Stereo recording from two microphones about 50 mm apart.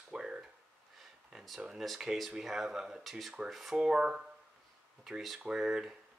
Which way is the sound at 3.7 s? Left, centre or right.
Centre.